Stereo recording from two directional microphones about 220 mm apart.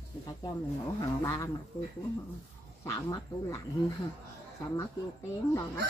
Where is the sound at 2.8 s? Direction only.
15° left (ahead or behind).